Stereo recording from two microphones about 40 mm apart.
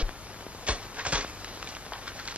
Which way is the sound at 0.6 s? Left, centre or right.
Right.